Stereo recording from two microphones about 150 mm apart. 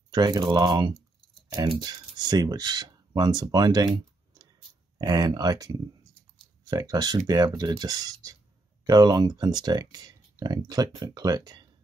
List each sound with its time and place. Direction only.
0.1 s speech: 30° right (ahead or behind)
4.9 s speech: 25° right (ahead or behind)